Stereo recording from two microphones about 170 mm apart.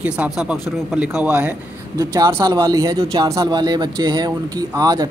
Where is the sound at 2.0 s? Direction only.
20° right (ahead or behind).